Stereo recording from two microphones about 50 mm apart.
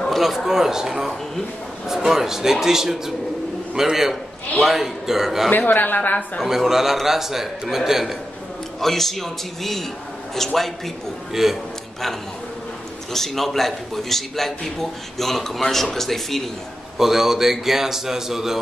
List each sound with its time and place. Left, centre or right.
0.1 s a sound: centre
0.5 s a man's voice: centre
5.5 s speech: left
6.4 s a man's voice: centre
8.8 s a man's voice: centre
11.4 s a man's voice: centre
13.1 s a man's voice: centre
17.0 s a man's voice: centre